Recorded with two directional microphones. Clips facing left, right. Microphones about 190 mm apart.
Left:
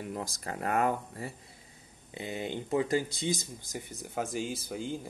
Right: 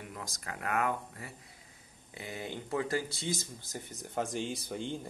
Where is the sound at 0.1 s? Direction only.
30° left (ahead or behind).